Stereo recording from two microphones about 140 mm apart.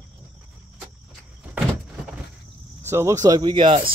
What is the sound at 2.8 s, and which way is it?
Speech, 20° right (ahead or behind).